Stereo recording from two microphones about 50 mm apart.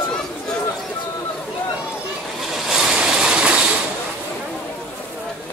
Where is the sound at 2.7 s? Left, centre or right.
Centre.